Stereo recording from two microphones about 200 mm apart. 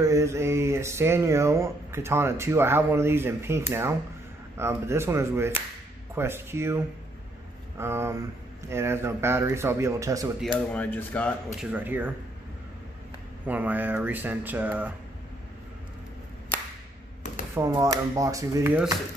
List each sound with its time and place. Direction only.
0.0 s mantra: 15° right (ahead or behind)
10.7 s speech: 10° left (ahead or behind)
11.6 s mantra: 10° right (ahead or behind)
13.5 s mantra: 10° right (ahead or behind)
17.6 s mantra: 15° right (ahead or behind)